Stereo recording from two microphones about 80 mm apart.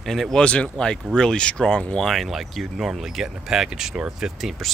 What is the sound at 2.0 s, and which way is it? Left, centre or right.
Speech, centre.